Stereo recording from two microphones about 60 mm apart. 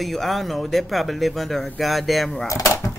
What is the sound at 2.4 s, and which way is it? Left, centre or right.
Door, left.